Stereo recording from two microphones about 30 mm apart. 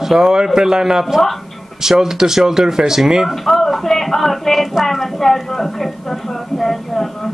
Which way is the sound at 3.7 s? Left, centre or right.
Centre.